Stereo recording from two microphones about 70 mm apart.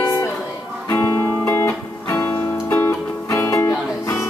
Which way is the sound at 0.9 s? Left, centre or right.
Left.